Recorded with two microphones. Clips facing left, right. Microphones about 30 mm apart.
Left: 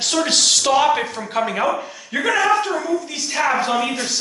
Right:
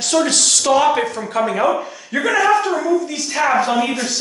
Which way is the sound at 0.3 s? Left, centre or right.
Centre.